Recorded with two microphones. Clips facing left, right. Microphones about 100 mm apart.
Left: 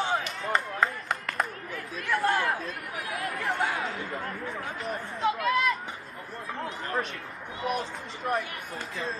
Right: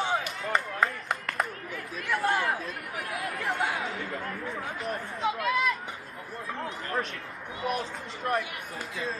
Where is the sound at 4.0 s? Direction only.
Centre (ahead or behind).